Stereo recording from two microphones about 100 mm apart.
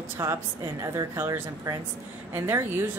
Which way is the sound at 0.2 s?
30° right (ahead or behind).